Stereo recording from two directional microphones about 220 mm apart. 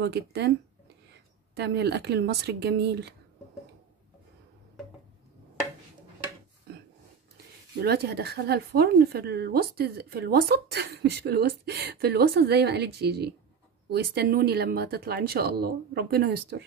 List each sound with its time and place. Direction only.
0.0 s speech: 50° right (ahead or behind)
7.8 s speech: 45° right (ahead or behind)